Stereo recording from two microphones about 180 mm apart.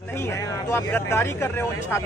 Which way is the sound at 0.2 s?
15° left (ahead or behind).